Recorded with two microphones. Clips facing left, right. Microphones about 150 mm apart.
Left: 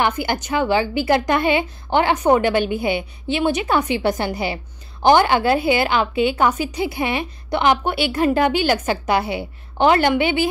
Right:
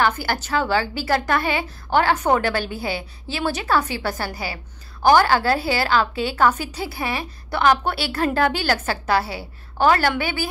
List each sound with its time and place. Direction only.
0.0 s a woman's voice: 15° left (ahead or behind)